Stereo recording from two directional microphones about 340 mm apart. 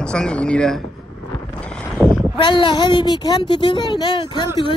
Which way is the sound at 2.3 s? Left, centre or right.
Centre.